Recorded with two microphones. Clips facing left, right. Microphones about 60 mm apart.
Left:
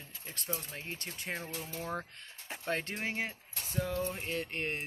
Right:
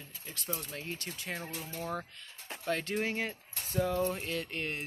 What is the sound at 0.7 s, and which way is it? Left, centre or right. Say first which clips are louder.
Speech: right 2 dB; left.